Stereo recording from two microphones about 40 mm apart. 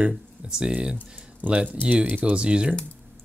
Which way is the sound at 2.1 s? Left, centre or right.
Right.